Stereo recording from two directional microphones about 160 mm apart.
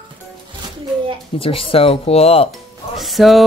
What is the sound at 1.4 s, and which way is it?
Speech, 35° left (ahead or behind).